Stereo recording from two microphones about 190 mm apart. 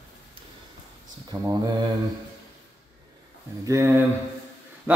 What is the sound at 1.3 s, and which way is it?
Speech, 15° right (ahead or behind).